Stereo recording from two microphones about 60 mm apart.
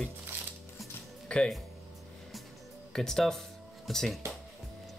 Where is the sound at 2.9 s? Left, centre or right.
Centre.